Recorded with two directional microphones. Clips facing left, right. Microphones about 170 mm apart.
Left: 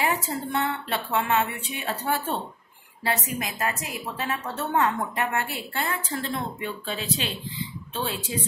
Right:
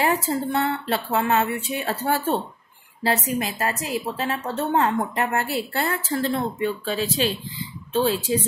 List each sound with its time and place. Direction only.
0.0 s a woman's voice: 35° right (ahead or behind)